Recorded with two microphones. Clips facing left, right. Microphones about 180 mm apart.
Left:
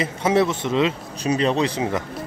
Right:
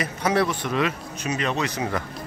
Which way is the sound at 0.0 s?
25° left (ahead or behind).